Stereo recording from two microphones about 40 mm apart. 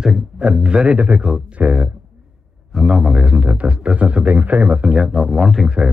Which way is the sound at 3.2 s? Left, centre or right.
Right.